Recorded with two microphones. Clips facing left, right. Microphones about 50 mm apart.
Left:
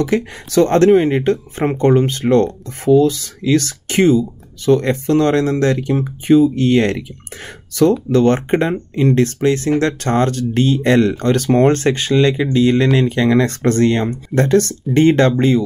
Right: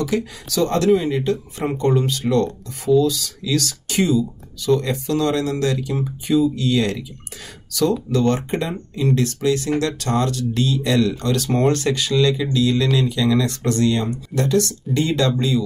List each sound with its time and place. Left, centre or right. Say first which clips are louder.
0.0 s speech: left 5 dB; left